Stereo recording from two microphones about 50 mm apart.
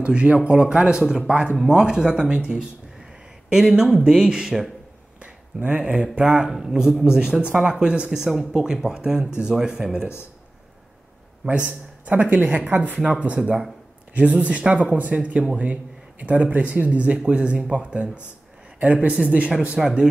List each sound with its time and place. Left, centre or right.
0.0 s speech: right
5.2 s speech: right
6.5 s speech: centre
11.5 s speech: right
19.8 s speech: centre